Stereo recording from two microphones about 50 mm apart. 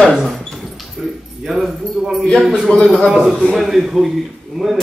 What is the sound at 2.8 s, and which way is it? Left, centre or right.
Speech, centre.